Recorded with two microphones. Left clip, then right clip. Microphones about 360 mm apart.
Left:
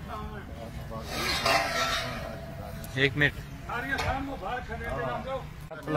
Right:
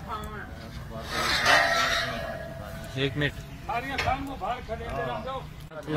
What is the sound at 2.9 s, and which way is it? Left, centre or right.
Speech, centre.